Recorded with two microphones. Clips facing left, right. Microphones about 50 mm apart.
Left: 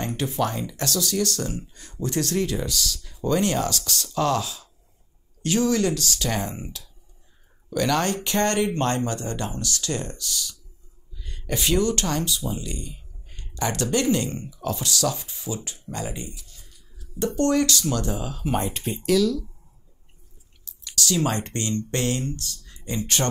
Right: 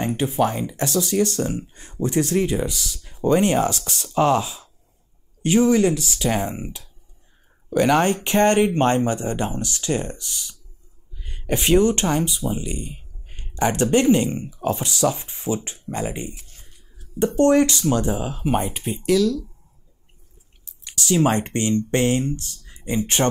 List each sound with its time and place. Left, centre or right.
0.0 s speech: right
18.6 s speech: centre
19.2 s speech: centre
20.8 s speech: right